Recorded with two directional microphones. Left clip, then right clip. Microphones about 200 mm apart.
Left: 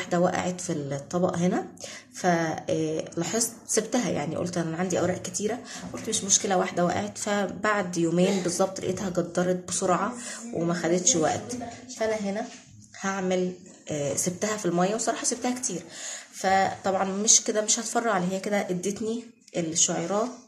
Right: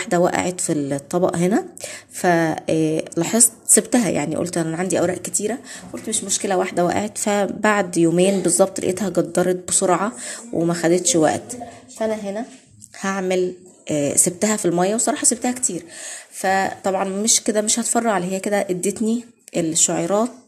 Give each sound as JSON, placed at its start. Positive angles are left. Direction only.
{"t": 0.0, "sound": "speech", "side_deg": -40}
{"t": 6.0, "sound": "speech", "side_deg": -35}